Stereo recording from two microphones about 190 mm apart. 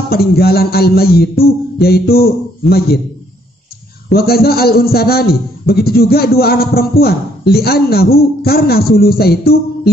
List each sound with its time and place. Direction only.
0.1 s a man's voice: 55° left (ahead or behind)
4.1 s a man's voice: 55° left (ahead or behind)